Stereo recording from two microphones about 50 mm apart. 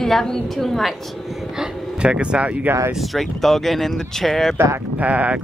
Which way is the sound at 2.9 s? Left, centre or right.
Centre.